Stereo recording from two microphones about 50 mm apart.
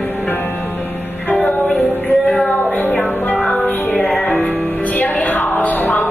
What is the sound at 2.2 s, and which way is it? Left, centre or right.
Music, centre.